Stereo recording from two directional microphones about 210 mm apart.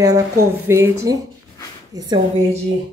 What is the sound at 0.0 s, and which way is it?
A woman's voice, 15° right (ahead or behind).